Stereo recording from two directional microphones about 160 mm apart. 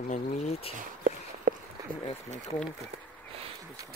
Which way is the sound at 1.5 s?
60° right (ahead or behind).